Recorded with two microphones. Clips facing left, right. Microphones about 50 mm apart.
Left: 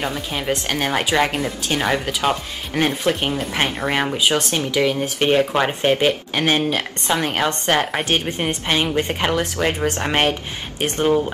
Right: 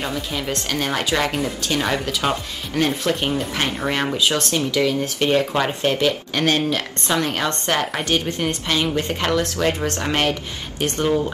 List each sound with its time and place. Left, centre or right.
0.0 s speech: left
4.2 s speech: left